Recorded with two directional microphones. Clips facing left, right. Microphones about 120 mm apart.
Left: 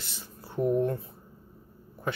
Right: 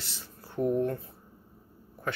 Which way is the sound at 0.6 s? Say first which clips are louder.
Left 2 dB; 20° left (ahead or behind).